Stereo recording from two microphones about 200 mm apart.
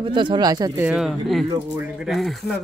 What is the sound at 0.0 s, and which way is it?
Speech, 25° right (ahead or behind).